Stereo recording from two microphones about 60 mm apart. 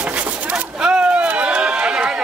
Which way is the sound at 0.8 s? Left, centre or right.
Right.